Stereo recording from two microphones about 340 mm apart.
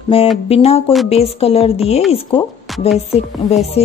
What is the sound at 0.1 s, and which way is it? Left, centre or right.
Speech, centre.